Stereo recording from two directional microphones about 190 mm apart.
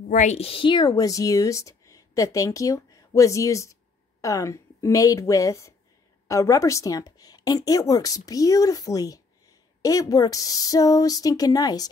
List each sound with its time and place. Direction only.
0.1 s a woman's voice: 40° left (ahead or behind); by 11.9 s 20° left (ahead or behind)